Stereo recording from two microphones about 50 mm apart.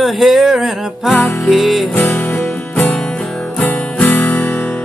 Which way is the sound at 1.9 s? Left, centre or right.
Left.